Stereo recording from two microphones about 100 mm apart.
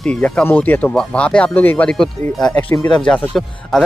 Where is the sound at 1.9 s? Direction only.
5° left (ahead or behind).